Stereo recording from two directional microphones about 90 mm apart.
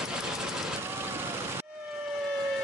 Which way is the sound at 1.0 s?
25° right (ahead or behind).